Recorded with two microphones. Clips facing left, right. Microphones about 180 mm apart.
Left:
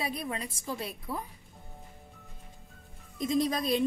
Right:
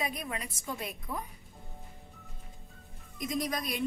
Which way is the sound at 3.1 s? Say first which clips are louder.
Left 5 dB; 25° left (ahead or behind).